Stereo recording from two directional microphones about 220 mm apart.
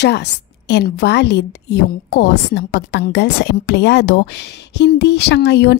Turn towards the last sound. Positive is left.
turn(degrees=50)  # may be behind; listen again after turning